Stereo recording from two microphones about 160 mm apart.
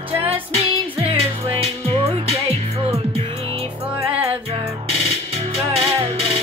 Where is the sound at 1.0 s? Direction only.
35° right (ahead or behind).